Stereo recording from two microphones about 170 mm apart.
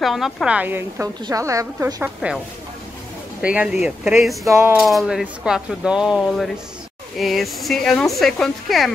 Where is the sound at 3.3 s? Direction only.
5° right (ahead or behind).